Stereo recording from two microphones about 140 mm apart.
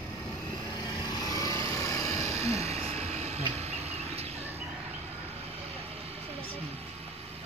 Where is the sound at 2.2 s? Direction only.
50° right (ahead or behind).